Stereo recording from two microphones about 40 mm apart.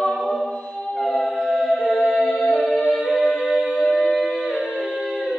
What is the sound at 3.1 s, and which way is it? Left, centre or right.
A capella, centre.